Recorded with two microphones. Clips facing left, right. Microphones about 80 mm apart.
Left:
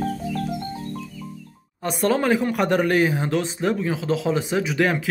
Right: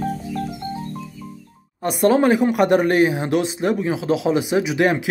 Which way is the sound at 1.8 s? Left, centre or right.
Centre.